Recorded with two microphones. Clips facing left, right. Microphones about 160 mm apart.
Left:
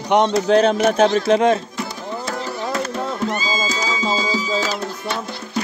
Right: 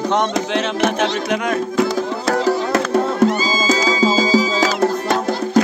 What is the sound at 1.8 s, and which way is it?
Music, 90° right.